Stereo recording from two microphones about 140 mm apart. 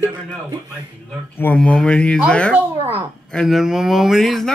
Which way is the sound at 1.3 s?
15° left (ahead or behind).